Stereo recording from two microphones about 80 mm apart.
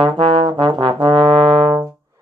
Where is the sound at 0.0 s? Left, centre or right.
Right.